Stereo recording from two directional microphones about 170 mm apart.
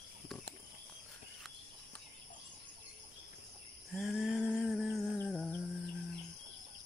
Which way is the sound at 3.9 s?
Centre (ahead or behind).